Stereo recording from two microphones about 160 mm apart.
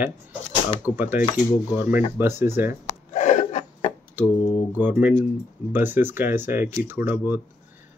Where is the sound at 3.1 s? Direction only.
50° left (ahead or behind).